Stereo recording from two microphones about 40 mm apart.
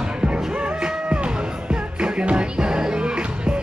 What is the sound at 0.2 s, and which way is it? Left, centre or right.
Music, right.